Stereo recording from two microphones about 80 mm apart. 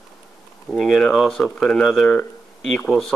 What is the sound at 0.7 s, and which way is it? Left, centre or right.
Speech, centre.